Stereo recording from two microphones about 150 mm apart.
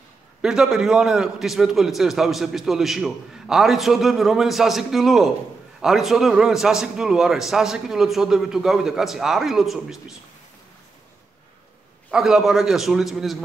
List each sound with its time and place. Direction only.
0.4 s a man's voice: 5° right (ahead or behind)
12.1 s a man's voice: 5° right (ahead or behind)